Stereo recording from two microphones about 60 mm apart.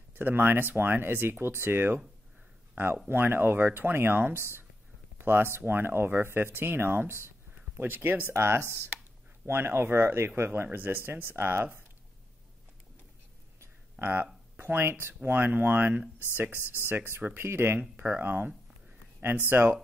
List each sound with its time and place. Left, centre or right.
0.1 s speech: right
8.3 s speech: right
13.9 s speech: right
18.0 s speech: right
19.5 s speech: right